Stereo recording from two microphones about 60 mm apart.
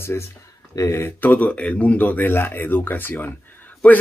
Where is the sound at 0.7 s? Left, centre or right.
Left.